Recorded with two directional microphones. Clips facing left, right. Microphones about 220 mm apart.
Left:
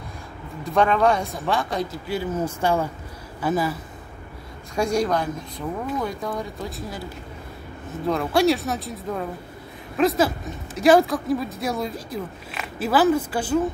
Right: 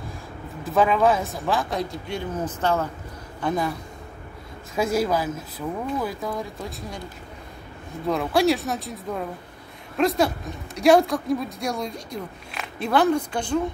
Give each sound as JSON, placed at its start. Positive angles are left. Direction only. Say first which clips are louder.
{"t": 0.7, "sound": "speech", "louder": "even", "side_deg": -5}
{"t": 8.1, "sound": "speech", "louder": "left 1 dB", "side_deg": 0}